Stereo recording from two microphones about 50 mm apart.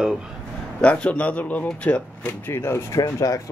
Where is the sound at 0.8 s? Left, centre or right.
Left.